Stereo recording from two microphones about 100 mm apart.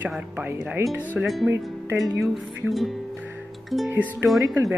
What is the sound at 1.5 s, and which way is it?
Speech, 30° right (ahead or behind).